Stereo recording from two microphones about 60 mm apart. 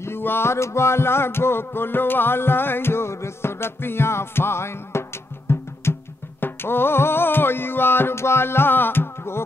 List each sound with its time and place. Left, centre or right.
0.0 s music: left